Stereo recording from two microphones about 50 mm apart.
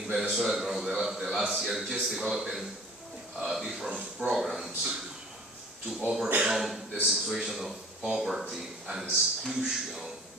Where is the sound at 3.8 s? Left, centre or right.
Right.